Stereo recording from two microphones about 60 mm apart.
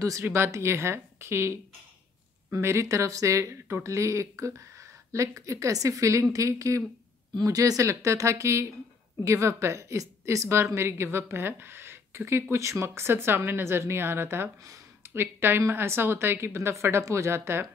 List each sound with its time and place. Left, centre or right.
0.2 s a woman's voice: right
7.4 s speech: right